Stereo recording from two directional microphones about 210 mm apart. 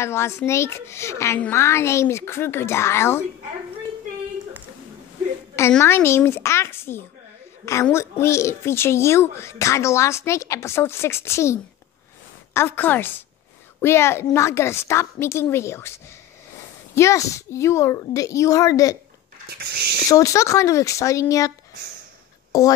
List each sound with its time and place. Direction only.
0.0 s a child's voice: 10° left (ahead or behind)
5.6 s a child's voice: 10° left (ahead or behind)
16.9 s a child's voice: 15° left (ahead or behind)
19.5 s speech: 50° right (ahead or behind)
20.1 s a child's voice: 15° left (ahead or behind)